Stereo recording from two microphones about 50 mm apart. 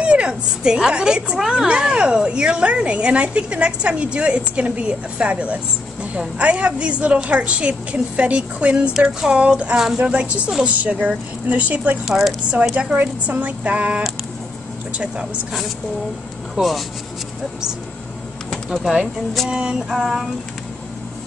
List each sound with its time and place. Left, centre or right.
0.0 s a woman's voice: right
12.1 s speech: centre
12.7 s a woman's voice: right
16.6 s female singing: centre
18.7 s speech: centre
19.5 s female singing: centre